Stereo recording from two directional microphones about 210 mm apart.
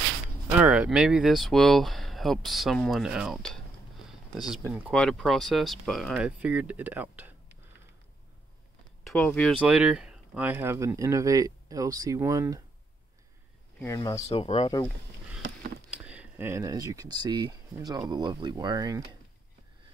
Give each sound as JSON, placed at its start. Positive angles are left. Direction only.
{"t": 0.6, "sound": "speech", "side_deg": -5}
{"t": 4.9, "sound": "speech", "side_deg": 5}
{"t": 9.0, "sound": "speech", "side_deg": 5}
{"t": 9.6, "sound": "speech", "side_deg": -5}
{"t": 13.7, "sound": "speech", "side_deg": 15}
{"t": 15.9, "sound": "speech", "side_deg": -5}